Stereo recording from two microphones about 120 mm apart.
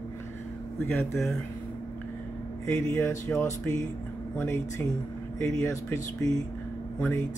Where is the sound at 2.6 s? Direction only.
20° left (ahead or behind).